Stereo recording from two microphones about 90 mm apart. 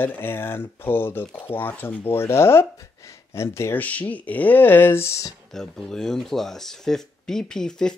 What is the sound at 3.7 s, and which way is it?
Speech, 20° left (ahead or behind).